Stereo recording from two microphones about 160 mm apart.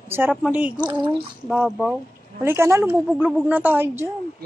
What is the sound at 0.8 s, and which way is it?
Speech, 30° right (ahead or behind).